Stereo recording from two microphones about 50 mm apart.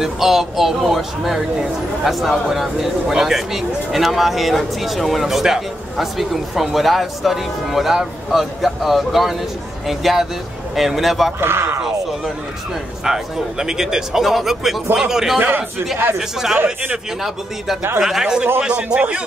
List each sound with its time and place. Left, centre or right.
0.0 s speech: centre
11.3 s speech: right
13.0 s speech: centre
15.3 s a man's voice: right
16.2 s speech: centre
18.0 s speech: centre
18.8 s a man's voice: right